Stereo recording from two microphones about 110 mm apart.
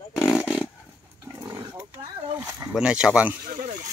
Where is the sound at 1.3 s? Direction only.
35° right (ahead or behind).